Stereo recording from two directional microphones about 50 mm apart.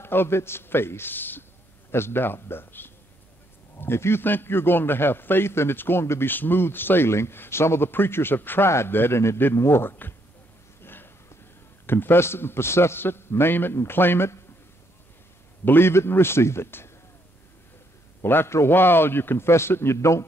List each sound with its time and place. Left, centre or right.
0.0 s a man's voice: left
1.9 s a man's voice: left
8.6 s a man's voice: left
10.8 s a sound: left
11.8 s a man's voice: left
15.6 s a man's voice: left
18.2 s a man's voice: left